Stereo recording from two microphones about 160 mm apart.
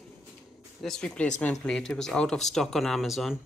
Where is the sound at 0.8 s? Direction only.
5° left (ahead or behind).